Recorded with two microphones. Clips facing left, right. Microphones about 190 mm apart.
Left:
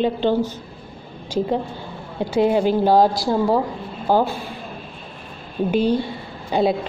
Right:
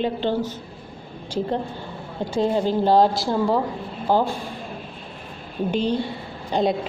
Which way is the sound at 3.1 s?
40° left (ahead or behind).